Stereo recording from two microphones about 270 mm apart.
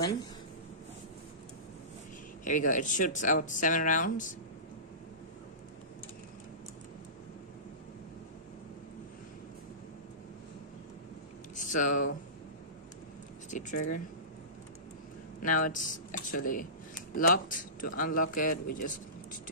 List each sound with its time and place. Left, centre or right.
2.4 s speech: left
11.5 s a sound: left
13.5 s speech: left
15.5 s a man's voice: left
18.7 s speech: left